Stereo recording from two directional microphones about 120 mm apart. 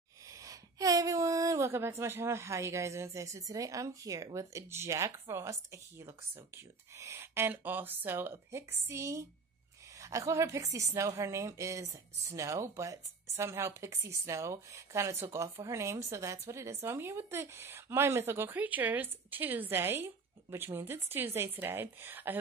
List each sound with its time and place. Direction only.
0.3 s a woman's voice: 30° right (ahead or behind)